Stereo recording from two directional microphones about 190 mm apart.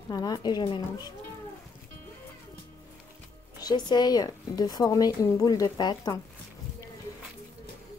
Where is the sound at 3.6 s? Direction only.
20° left (ahead or behind).